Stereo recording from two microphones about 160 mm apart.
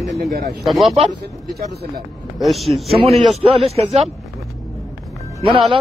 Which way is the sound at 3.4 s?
40° right (ahead or behind).